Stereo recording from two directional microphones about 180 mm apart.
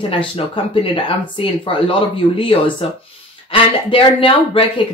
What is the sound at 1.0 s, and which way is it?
Speech, 30° left (ahead or behind).